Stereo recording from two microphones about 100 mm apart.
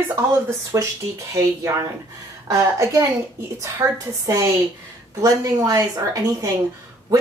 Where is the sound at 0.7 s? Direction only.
30° right (ahead or behind).